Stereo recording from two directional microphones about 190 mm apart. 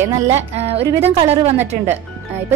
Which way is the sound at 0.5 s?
35° right (ahead or behind).